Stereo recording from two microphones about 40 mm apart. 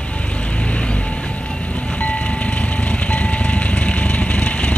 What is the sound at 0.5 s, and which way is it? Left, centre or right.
Vehicle, left.